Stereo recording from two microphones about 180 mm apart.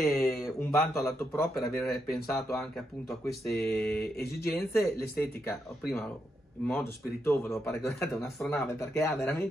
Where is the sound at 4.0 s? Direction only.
60° left (ahead or behind).